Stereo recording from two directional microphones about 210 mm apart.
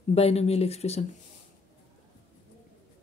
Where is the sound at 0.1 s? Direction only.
30° left (ahead or behind).